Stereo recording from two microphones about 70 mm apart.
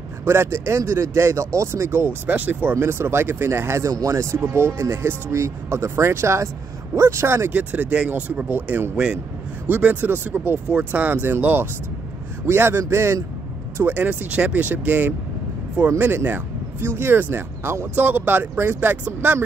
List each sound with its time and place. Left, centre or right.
0.2 s speech: right
2.7 s speech: right
3.9 s speech: right
7.5 s speech: right
8.9 s a man's voice: centre
9.7 s speech: right
13.9 s speech: right
16.3 s speech: right